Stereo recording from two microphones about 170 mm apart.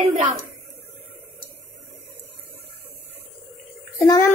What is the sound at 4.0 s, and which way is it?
Speech, 20° left (ahead or behind).